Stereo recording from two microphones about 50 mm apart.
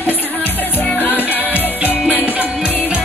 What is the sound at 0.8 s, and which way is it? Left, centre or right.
Music, left.